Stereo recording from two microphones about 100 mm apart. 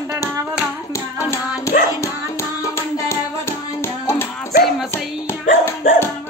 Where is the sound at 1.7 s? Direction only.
30° left (ahead or behind).